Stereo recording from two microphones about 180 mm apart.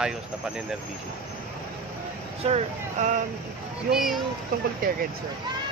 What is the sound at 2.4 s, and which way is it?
Speech, 40° right (ahead or behind).